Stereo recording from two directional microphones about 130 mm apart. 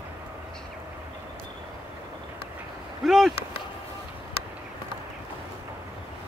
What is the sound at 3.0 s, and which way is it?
Speech, centre (ahead or behind).